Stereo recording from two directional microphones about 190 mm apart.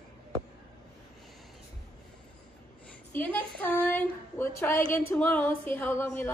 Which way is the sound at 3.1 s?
10° left (ahead or behind).